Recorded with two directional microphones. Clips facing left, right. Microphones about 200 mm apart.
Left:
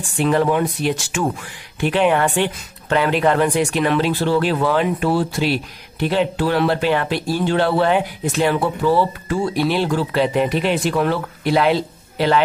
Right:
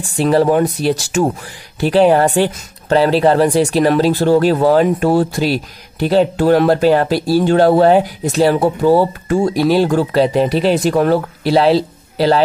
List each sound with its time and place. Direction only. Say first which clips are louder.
0.0 s speech: right 4 dB; 35° right (ahead or behind)